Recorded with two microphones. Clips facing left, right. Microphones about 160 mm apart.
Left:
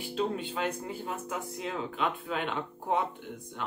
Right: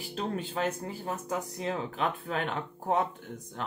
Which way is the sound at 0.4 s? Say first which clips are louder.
Right 1 dB; 40° right (ahead or behind).